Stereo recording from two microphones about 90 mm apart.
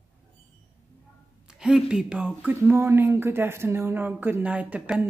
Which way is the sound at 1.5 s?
10° right (ahead or behind).